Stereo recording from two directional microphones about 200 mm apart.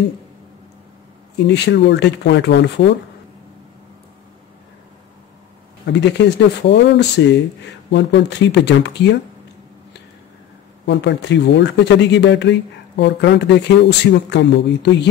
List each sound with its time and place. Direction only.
1.4 s speech: 60° left (ahead or behind)
5.9 s speech: 60° left (ahead or behind)
10.9 s speech: 60° left (ahead or behind)